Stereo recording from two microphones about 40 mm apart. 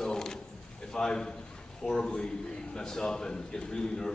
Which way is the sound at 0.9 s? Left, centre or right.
Centre.